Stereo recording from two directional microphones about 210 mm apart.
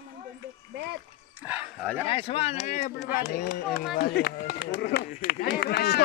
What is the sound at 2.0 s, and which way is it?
Speech, 25° left (ahead or behind).